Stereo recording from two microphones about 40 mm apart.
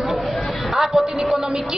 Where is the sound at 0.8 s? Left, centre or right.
Centre.